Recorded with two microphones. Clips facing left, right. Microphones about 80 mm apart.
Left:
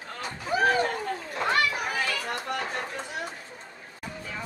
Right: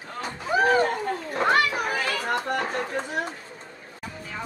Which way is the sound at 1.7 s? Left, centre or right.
Right.